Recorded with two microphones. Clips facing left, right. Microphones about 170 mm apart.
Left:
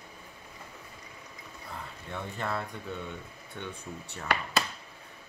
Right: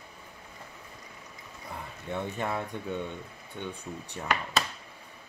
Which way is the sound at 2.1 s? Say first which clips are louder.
Right 3 dB; 15° right (ahead or behind).